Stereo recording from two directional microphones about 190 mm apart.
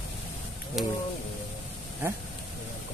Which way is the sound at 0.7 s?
Centre (ahead or behind).